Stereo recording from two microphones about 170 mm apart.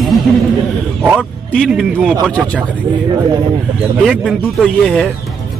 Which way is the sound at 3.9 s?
Centre (ahead or behind).